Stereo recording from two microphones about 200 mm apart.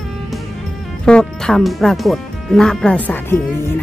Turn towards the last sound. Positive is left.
turn(degrees=10)  # may be behind; listen again after turning